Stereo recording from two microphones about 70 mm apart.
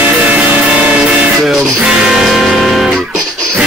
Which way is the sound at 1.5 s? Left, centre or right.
Centre.